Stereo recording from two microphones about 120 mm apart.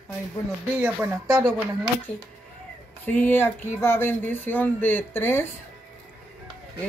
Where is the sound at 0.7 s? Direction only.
25° right (ahead or behind).